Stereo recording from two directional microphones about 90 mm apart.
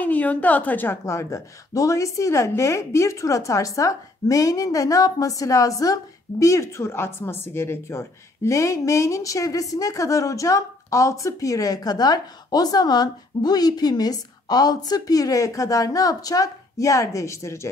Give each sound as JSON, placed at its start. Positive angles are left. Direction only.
{"t": 0.0, "sound": "a woman's voice", "side_deg": 15}
{"t": 1.0, "sound": "a woman's voice", "side_deg": 35}